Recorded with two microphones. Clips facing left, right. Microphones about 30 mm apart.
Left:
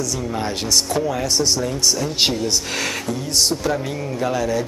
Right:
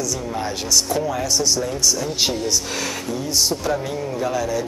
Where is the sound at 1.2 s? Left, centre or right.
Left.